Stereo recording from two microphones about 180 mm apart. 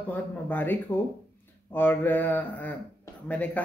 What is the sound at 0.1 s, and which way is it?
Speech, 10° left (ahead or behind).